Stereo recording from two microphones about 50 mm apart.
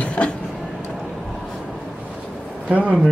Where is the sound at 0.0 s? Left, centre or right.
Left.